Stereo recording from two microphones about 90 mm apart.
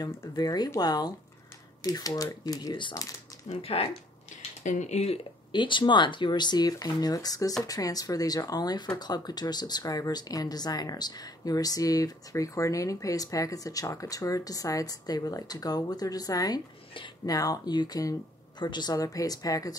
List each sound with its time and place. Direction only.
0.4 s speech: 45° left (ahead or behind)
3.6 s speech: 90° left
5.1 s speech: 65° left (ahead or behind); by 19.8 s 45° left (ahead or behind)